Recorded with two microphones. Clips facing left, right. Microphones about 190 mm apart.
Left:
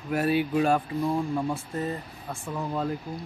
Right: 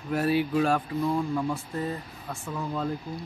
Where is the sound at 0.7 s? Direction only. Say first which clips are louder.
Left 1 dB; 20° left (ahead or behind).